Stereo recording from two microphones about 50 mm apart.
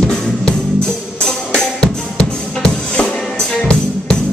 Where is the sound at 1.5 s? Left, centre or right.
Centre.